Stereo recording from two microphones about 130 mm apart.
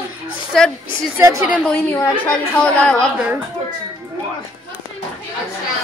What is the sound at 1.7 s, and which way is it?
A woman's voice, 15° left (ahead or behind).